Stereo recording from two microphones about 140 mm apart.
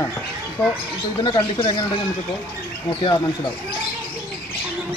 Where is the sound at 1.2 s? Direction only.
35° left (ahead or behind).